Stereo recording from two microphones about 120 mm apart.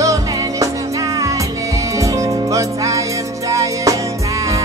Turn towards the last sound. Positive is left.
turn(degrees=-25)  # may be behind; listen again after turning